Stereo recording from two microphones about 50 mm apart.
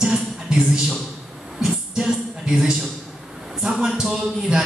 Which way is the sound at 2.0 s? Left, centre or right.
Centre.